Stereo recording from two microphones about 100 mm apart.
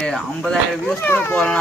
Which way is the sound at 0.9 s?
20° left (ahead or behind).